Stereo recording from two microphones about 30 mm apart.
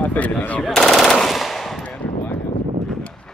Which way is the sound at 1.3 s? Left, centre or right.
Centre.